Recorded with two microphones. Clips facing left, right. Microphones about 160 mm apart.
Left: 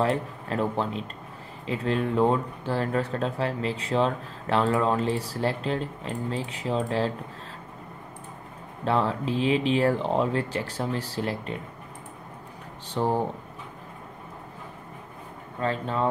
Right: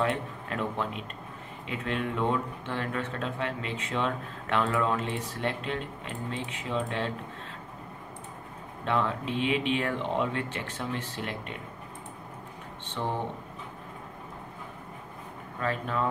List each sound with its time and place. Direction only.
0.0 s speech: 35° left (ahead or behind)
8.8 s speech: 35° left (ahead or behind)
12.8 s speech: 35° left (ahead or behind)
15.6 s speech: 30° left (ahead or behind)